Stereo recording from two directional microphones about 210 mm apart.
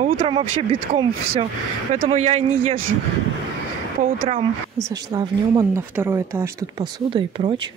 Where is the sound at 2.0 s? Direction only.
30° right (ahead or behind).